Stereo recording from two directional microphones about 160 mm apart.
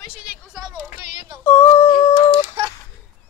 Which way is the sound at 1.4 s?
15° left (ahead or behind).